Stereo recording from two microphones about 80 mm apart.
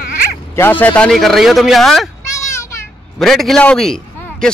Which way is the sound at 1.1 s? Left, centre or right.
Centre.